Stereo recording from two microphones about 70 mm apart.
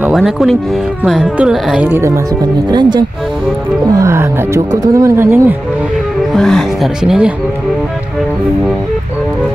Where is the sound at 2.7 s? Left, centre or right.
Right.